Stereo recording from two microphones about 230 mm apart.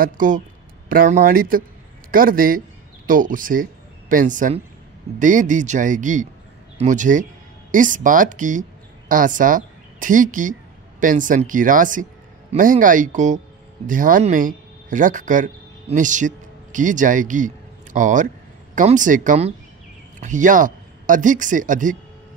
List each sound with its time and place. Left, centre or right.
0.0 s a woman's voice: right